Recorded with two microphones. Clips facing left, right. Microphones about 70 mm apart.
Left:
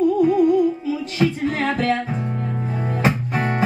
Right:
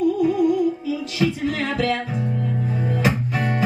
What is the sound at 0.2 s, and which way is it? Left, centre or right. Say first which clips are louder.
Music: left 3 dB; left.